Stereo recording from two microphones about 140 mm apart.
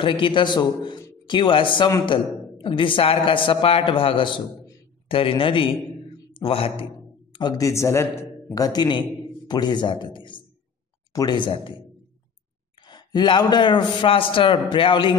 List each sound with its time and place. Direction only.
0.0 s a man's voice: 35° left (ahead or behind)
7.3 s a man's voice: 25° left (ahead or behind)
12.8 s a man's voice: 30° left (ahead or behind)